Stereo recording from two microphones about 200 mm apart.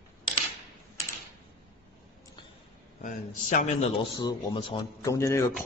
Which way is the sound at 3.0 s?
40° left (ahead or behind).